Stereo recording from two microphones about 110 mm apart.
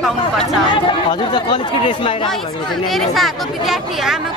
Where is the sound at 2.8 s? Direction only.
Centre (ahead or behind).